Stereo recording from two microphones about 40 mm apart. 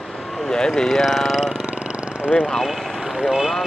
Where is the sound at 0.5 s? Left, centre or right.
Centre.